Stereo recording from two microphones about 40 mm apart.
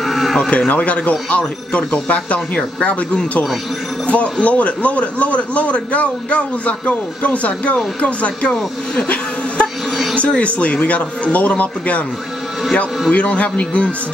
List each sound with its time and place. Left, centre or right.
0.0 s livestock: centre
0.4 s a man's voice: left
2.8 s speech: left
4.1 s a man's voice: left
13.1 s a man's voice: left